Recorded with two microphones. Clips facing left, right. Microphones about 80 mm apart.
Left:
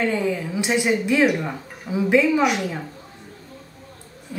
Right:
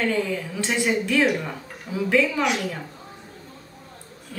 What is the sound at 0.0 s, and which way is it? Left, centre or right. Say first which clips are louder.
A woman's voice: left 2 dB; centre.